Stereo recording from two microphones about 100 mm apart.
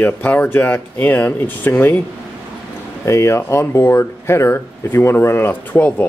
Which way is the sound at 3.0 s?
30° left (ahead or behind).